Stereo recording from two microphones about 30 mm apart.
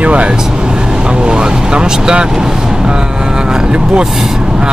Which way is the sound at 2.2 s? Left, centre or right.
Right.